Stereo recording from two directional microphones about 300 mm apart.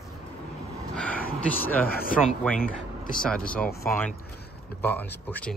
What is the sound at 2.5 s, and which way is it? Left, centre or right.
Speech, left.